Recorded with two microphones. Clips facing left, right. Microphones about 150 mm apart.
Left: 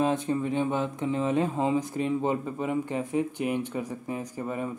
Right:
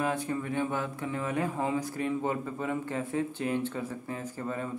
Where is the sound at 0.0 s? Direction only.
20° left (ahead or behind).